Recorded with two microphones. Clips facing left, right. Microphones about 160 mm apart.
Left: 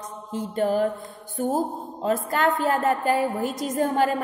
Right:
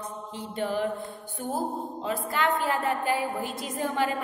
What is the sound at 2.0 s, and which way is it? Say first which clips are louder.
Mantra: left 6 dB; 45° left (ahead or behind).